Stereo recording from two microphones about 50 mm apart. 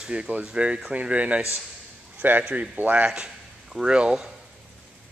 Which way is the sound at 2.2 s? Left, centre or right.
Right.